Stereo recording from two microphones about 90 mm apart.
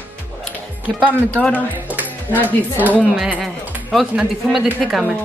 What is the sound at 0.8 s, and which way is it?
Speech, 15° right (ahead or behind).